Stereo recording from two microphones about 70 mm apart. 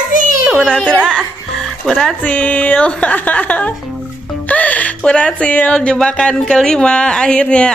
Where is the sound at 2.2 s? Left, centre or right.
Left.